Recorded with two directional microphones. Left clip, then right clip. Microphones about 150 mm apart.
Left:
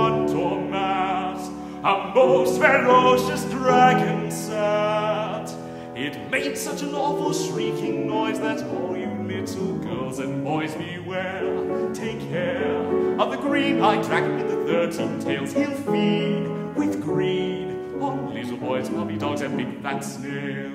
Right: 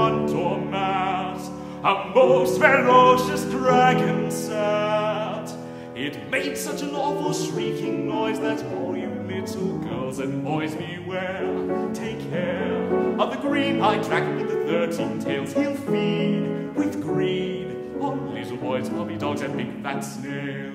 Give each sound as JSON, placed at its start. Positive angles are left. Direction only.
{"t": 0.0, "sound": "music", "side_deg": -15}
{"t": 7.0, "sound": "music", "side_deg": -10}
{"t": 12.4, "sound": "music", "side_deg": 0}
{"t": 18.7, "sound": "music", "side_deg": 0}